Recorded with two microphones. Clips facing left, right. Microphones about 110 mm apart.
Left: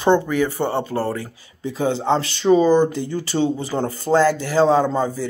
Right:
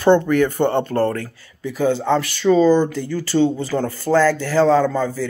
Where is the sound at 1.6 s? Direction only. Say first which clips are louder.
Right 2 dB; 25° left (ahead or behind).